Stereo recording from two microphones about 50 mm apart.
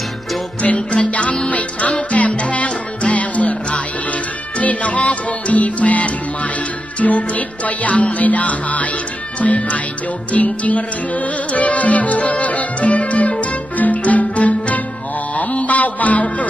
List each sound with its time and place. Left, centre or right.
0.6 s music: left